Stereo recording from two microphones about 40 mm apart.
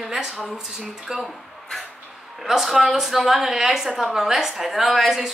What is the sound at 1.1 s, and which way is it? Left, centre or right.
Speech, centre.